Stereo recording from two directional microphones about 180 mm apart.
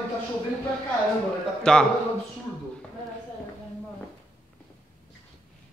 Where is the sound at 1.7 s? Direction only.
5° left (ahead or behind).